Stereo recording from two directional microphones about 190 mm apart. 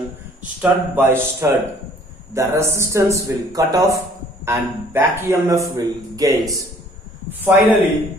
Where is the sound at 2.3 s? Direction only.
15° right (ahead or behind).